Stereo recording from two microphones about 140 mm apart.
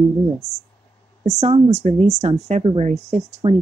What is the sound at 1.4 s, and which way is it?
Speech, 55° right (ahead or behind).